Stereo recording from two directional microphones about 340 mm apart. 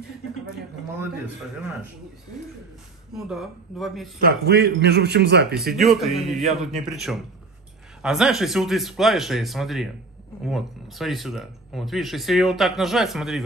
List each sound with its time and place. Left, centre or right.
3.2 s speech: centre
4.2 s a man's voice: right
5.8 s speech: centre